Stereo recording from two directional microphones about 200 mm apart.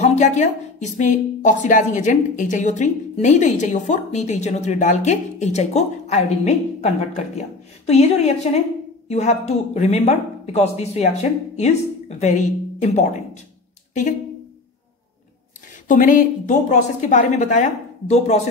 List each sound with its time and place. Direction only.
0.0 s a woman's voice: 35° left (ahead or behind)
15.9 s a woman's voice: 40° left (ahead or behind)